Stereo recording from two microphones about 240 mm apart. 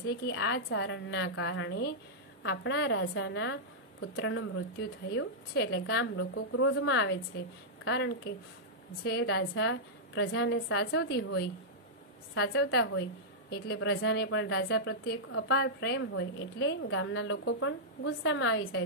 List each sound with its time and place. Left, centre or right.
0.3 s a woman's voice: left